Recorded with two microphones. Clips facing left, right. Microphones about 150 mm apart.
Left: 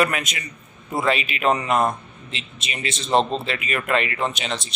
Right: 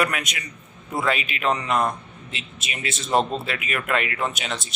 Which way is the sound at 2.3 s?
5° right (ahead or behind).